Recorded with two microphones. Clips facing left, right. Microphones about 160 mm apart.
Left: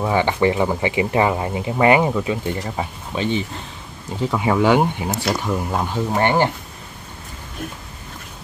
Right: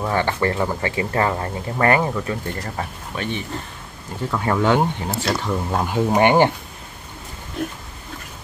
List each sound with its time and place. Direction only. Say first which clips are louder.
0.0 s speech: left 3 dB; 10° left (ahead or behind)
4.2 s speech: left 3 dB; 15° left (ahead or behind)
5.9 s speech: right 4 dB; 15° right (ahead or behind)